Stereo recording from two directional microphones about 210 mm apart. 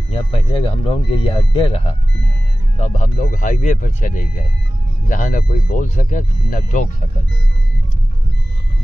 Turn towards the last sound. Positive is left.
turn(degrees=35)  # may be behind; listen again after turning